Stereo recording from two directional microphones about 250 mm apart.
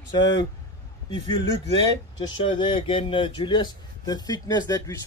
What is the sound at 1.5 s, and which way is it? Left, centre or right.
Speech, right.